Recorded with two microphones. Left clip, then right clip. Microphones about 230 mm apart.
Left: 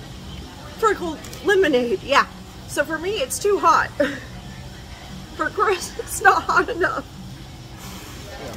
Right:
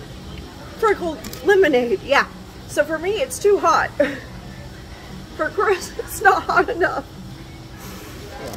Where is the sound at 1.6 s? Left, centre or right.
Centre.